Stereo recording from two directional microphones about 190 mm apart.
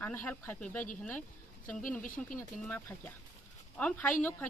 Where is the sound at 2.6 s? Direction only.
10° left (ahead or behind).